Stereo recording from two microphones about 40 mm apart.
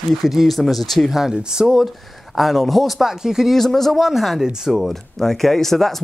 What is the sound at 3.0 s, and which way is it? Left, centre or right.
Speech, centre.